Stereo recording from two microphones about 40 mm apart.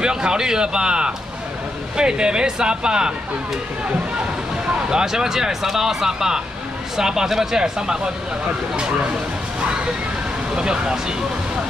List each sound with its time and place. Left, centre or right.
0.0 s speech: right
4.8 s speech: centre
10.5 s speech: right